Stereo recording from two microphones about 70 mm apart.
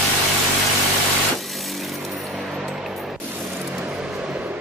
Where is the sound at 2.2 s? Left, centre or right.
Centre.